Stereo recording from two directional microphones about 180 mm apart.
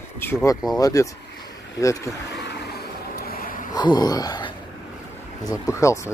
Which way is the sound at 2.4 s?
70° left (ahead or behind).